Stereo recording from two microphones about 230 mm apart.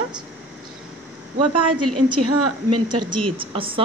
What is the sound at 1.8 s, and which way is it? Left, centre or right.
A woman's voice, right.